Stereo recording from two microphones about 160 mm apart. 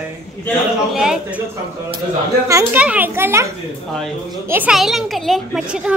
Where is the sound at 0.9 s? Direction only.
5° right (ahead or behind).